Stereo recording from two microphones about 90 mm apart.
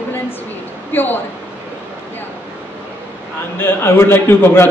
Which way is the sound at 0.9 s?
20° left (ahead or behind).